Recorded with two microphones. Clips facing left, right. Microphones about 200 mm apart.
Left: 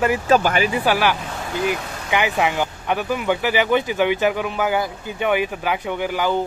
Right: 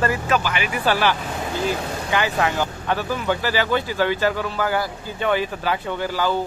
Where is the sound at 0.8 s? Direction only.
10° left (ahead or behind).